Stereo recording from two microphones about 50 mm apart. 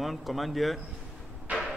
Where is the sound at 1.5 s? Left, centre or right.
Right.